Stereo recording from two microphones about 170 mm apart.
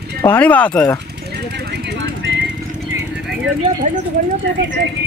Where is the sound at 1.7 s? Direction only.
90° right.